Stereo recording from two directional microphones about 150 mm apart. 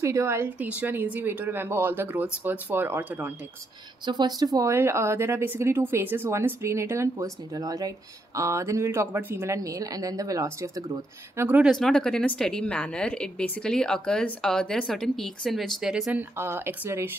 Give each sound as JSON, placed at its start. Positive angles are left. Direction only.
{"t": 0.0, "sound": "a woman's voice", "side_deg": -20}
{"t": 4.0, "sound": "a woman's voice", "side_deg": -30}
{"t": 11.3, "sound": "a woman's voice", "side_deg": -10}
{"t": 11.7, "sound": "a woman's voice", "side_deg": 5}